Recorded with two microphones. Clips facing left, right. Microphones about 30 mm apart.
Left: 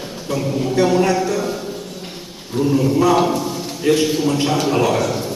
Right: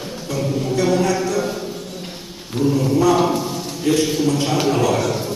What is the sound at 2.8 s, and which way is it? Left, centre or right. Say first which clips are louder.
A man's voice: left 1 dB; centre.